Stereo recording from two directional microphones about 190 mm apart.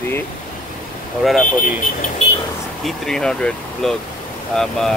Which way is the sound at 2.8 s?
Centre (ahead or behind).